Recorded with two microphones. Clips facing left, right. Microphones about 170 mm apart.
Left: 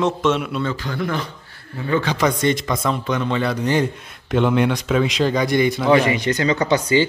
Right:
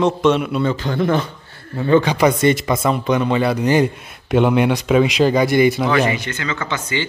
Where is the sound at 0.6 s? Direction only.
20° right (ahead or behind).